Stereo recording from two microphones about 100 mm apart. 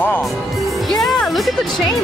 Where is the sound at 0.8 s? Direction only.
Centre (ahead or behind).